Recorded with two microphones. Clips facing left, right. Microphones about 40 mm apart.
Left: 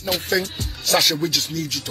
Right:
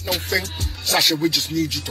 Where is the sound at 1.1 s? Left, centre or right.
Centre.